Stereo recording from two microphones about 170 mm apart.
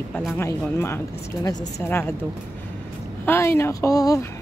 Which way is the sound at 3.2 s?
15° left (ahead or behind).